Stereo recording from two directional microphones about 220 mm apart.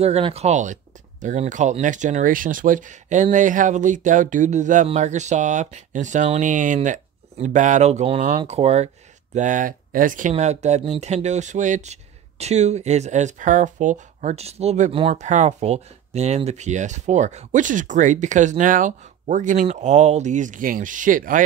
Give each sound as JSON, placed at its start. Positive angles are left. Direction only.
{"t": 0.0, "sound": "speech", "side_deg": -30}